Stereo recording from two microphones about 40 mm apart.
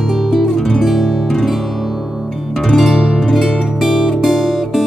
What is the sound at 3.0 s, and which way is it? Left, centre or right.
Music, centre.